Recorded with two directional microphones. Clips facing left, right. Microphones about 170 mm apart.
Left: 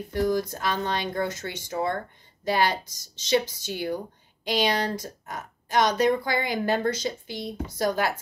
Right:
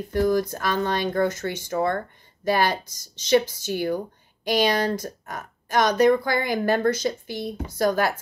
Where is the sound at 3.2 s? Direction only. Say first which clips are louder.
Right 4 dB; 50° right (ahead or behind).